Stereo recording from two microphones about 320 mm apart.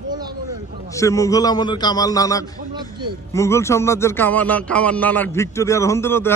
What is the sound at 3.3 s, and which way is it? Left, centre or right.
Speech, centre.